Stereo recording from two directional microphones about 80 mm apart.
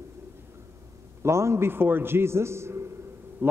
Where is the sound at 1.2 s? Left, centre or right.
Right.